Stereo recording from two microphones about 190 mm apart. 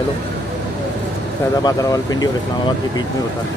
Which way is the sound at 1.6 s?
20° left (ahead or behind).